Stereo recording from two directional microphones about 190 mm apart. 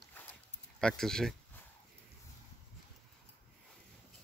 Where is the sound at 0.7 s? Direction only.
5° left (ahead or behind).